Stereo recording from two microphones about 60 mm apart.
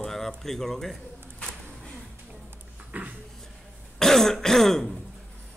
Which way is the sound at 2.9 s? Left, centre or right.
Right.